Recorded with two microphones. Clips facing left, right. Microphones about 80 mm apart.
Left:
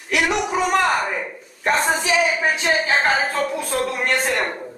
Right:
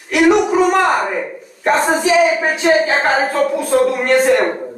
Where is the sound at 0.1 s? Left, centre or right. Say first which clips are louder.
Right 8 dB; centre.